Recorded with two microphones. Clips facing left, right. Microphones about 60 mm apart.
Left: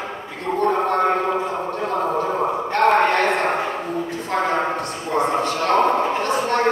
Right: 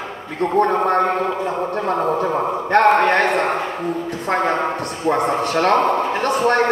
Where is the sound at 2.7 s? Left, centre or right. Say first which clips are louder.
Right 3 dB; right.